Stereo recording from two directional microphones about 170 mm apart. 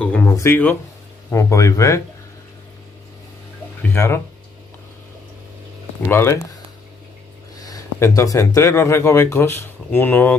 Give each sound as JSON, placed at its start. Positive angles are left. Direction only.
{"t": 0.0, "sound": "a sound", "side_deg": 10}
{"t": 0.3, "sound": "speech", "side_deg": 15}
{"t": 3.9, "sound": "speech", "side_deg": 15}
{"t": 6.0, "sound": "speech", "side_deg": 15}
{"t": 7.6, "sound": "speech", "side_deg": 20}